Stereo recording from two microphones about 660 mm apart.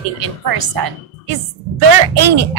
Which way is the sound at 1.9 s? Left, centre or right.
Right.